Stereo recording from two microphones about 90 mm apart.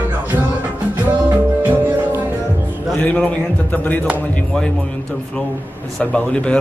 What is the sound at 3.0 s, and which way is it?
A man's voice, 15° left (ahead or behind).